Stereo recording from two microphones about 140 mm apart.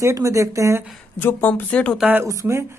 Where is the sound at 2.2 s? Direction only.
20° right (ahead or behind).